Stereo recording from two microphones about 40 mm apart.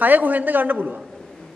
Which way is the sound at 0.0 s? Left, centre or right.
Right.